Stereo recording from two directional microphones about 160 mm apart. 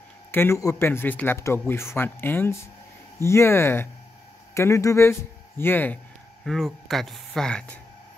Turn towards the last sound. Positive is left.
turn(degrees=5)  # may be behind; listen again after turning